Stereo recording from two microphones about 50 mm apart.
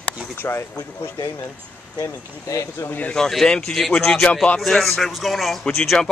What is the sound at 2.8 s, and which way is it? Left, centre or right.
Speech, left.